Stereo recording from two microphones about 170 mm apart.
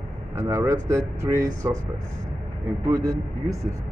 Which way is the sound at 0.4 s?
15° right (ahead or behind).